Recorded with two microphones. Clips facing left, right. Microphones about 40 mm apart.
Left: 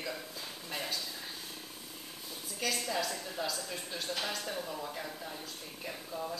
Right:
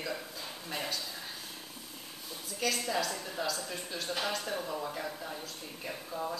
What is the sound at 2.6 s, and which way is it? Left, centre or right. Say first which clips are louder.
A woman's voice: right 2 dB; centre.